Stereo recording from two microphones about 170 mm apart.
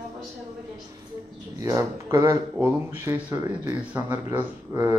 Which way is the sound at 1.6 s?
20° right (ahead or behind).